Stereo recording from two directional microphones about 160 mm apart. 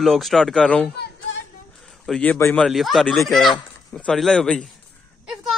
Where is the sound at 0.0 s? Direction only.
Centre (ahead or behind).